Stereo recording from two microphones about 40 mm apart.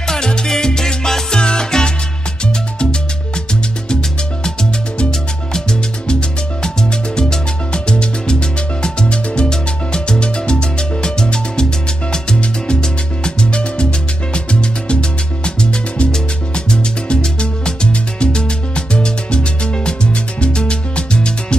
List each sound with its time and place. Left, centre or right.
0.0 s salsa music: centre
5.5 s music: centre